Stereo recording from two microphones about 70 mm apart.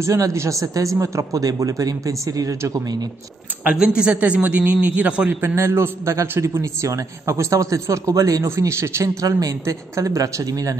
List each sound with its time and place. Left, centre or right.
0.0 s speech: right
2.7 s speech: right
3.7 s a man's voice: centre
5.3 s a man's voice: right
5.6 s a man's voice: right
8.5 s speech: right